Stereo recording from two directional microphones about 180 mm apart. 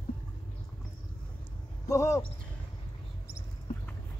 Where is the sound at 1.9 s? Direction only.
15° left (ahead or behind).